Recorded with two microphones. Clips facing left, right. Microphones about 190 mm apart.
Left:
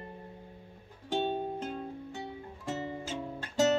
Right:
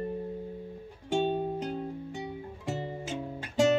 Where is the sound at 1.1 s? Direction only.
15° right (ahead or behind).